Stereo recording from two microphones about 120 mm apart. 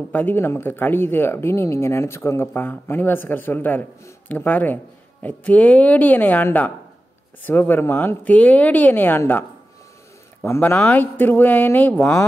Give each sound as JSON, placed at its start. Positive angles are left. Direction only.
{"t": 0.1, "sound": "speech", "side_deg": 15}
{"t": 10.4, "sound": "speech", "side_deg": 20}